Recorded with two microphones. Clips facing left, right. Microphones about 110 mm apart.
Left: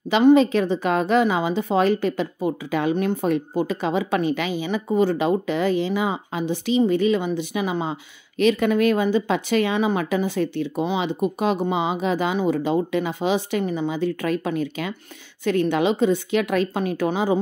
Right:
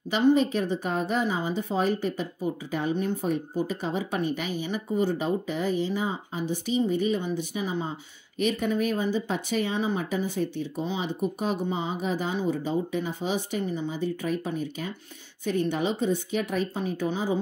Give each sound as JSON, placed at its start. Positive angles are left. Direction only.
{"t": 0.1, "sound": "a woman's voice", "side_deg": 90}